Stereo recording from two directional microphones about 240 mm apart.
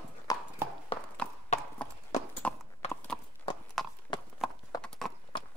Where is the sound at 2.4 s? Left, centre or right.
Centre.